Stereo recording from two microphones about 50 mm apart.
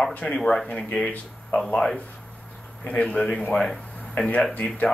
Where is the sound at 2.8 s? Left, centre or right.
Left.